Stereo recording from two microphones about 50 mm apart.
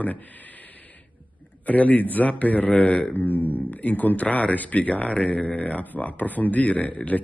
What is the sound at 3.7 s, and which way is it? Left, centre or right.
Speech, left.